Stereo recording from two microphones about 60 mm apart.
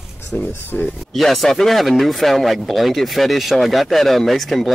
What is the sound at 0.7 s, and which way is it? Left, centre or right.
Speech, left.